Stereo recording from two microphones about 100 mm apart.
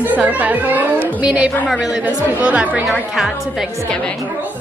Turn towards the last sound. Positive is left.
turn(degrees=0)  # may be behind; listen again after turning